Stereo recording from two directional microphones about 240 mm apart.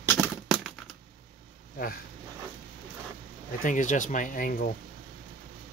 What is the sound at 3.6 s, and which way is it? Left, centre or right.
Speech, left.